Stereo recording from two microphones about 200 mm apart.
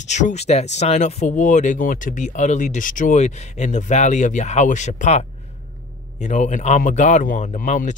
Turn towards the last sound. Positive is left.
turn(degrees=40)  # may be behind; listen again after turning